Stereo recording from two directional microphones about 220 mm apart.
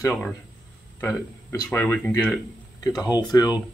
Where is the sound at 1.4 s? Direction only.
10° left (ahead or behind).